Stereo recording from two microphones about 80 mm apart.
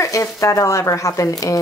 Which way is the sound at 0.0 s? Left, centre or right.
Left.